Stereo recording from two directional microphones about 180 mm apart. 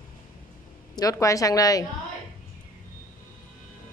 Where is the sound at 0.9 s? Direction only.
20° left (ahead or behind).